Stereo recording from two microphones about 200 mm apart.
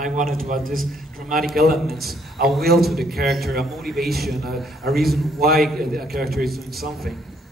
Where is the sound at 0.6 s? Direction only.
Centre (ahead or behind).